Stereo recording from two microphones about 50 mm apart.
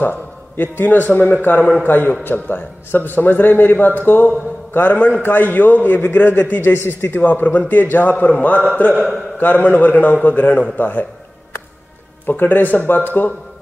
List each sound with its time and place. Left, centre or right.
0.0 s a man's voice: left
6.7 s speech: left
7.2 s speech: left
12.3 s speech: left